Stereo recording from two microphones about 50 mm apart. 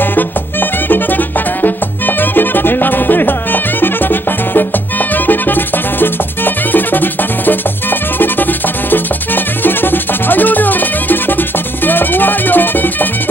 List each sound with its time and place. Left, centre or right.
0.0 s music: left